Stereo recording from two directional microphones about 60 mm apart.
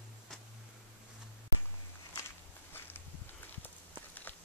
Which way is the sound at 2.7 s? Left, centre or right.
Left.